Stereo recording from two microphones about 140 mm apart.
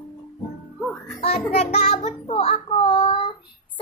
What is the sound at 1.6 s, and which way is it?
Child singing, 50° left (ahead or behind).